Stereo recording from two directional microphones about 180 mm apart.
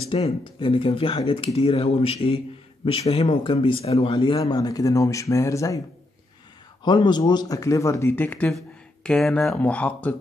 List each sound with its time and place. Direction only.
0.1 s a man's voice: 30° left (ahead or behind)
6.8 s speech: 25° left (ahead or behind); by 10.1 s 10° left (ahead or behind)